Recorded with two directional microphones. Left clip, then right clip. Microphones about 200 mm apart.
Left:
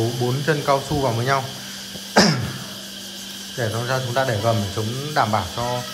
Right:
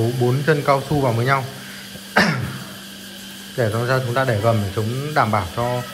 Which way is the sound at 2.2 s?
30° left (ahead or behind).